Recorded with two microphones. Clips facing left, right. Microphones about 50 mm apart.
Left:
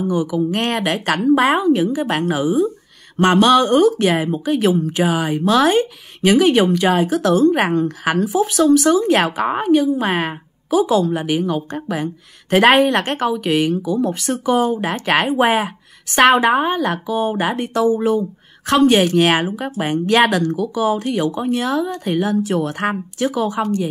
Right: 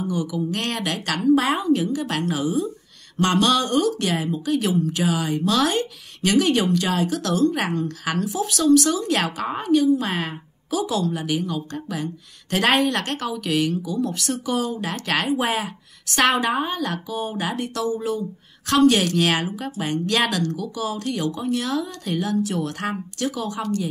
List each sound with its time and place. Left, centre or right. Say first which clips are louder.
0.0 s a woman's voice: left 6 dB; left